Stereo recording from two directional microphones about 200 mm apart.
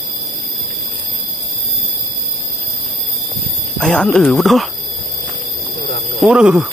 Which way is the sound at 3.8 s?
5° left (ahead or behind).